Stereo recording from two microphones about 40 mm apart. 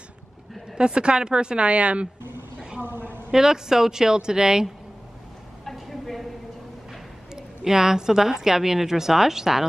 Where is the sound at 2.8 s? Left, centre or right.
Right.